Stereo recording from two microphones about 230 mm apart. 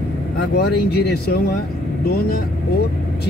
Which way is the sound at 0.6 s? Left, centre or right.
Left.